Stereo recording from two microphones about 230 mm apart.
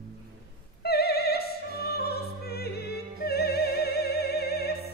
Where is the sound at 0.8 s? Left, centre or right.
Left.